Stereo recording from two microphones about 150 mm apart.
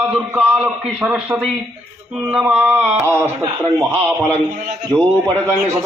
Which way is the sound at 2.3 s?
10° right (ahead or behind).